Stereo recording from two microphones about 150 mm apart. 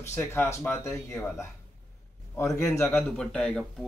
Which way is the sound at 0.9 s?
5° left (ahead or behind).